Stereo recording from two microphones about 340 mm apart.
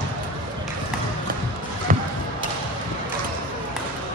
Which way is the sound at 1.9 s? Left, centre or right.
Right.